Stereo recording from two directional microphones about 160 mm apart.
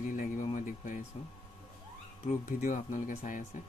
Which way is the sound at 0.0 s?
55° left (ahead or behind).